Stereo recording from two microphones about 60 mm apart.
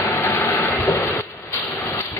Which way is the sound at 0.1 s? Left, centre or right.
Left.